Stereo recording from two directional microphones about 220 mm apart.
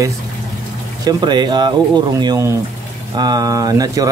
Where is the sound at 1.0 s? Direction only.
20° right (ahead or behind).